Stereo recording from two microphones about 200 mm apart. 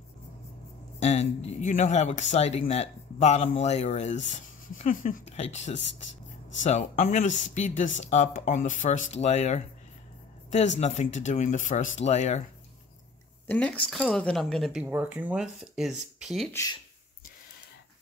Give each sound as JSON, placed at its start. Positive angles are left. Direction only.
{"t": 0.9, "sound": "speech", "side_deg": 35}
{"t": 10.8, "sound": "speech", "side_deg": 35}
{"t": 13.5, "sound": "a woman's voice", "side_deg": 5}